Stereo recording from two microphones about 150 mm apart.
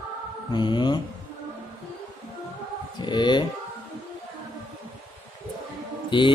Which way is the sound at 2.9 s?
30° left (ahead or behind).